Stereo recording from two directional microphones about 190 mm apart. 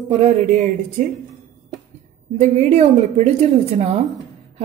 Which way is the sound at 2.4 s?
35° right (ahead or behind).